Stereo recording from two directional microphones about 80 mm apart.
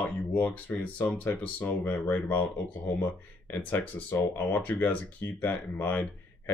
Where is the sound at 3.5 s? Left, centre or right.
Left.